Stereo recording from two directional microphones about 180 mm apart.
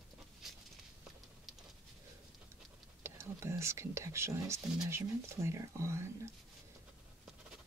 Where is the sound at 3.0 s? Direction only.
15° right (ahead or behind).